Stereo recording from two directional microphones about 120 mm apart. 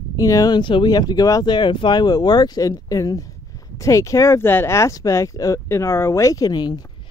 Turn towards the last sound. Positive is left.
turn(degrees=35)  # may be behind; listen again after turning